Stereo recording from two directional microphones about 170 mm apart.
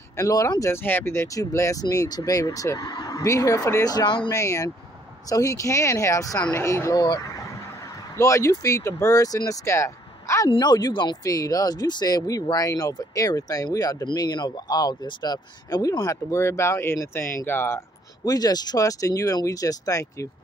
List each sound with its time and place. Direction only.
0.2 s speech: 20° left (ahead or behind)
8.2 s speech: 20° left (ahead or behind)